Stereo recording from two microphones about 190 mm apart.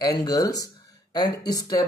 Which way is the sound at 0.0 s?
20° left (ahead or behind).